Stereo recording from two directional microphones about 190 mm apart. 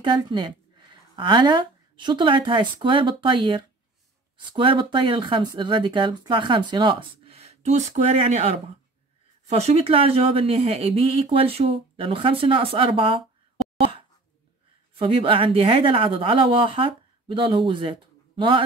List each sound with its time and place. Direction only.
0.0 s speech: 25° right (ahead or behind)
15.0 s speech: 30° right (ahead or behind)